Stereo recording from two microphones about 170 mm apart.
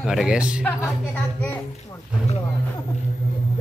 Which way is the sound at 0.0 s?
5° right (ahead or behind).